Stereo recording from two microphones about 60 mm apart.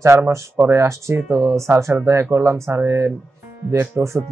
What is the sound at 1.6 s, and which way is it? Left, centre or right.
Speech, right.